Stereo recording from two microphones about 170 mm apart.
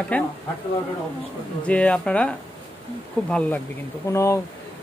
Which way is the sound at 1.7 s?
5° left (ahead or behind).